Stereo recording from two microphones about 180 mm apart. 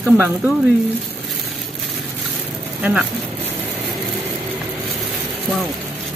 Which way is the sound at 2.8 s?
5° right (ahead or behind).